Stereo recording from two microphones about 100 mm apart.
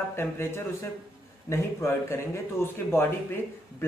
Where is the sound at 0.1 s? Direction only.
25° left (ahead or behind).